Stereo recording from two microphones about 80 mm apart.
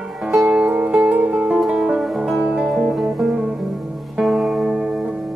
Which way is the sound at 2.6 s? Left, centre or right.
Centre.